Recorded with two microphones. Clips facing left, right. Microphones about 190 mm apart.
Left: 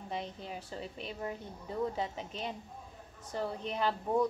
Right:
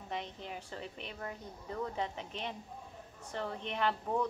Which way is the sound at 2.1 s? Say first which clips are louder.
Left 2 dB; 35° left (ahead or behind).